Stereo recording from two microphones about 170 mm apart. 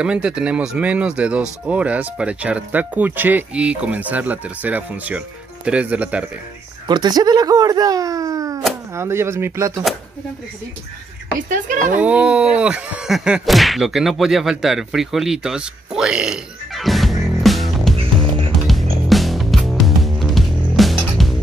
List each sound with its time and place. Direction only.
0.0 s speech: 5° right (ahead or behind)
6.9 s speech: 25° right (ahead or behind)
11.3 s speech: 50° right (ahead or behind)
12.0 s speech: 5° right (ahead or behind)
17.9 s music: 35° right (ahead or behind)
18.6 s music: centre (ahead or behind)